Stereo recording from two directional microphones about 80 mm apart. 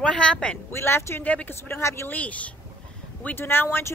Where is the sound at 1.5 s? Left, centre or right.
Left.